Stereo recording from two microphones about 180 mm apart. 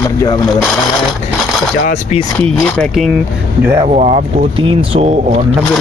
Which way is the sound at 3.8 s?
40° right (ahead or behind).